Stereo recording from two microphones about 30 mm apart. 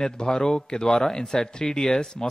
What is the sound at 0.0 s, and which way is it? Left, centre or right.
Speech, left.